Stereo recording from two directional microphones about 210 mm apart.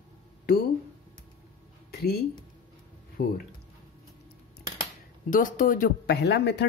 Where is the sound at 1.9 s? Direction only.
50° left (ahead or behind).